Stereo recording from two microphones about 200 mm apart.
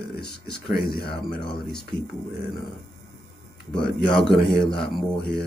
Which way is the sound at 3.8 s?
5° left (ahead or behind).